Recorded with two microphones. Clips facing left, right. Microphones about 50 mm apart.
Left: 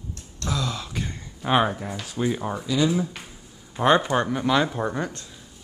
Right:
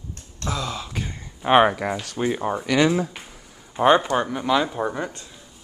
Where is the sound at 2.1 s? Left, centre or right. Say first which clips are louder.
Even; right.